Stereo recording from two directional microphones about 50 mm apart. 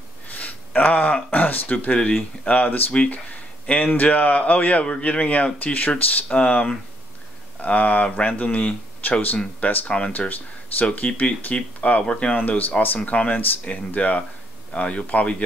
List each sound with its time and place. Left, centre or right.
0.3 s a sound: left
1.3 s speech: left
1.9 s speech: left
6.2 s speech: left
9.8 s speech: centre
10.1 s speech: left
12.4 s speech: left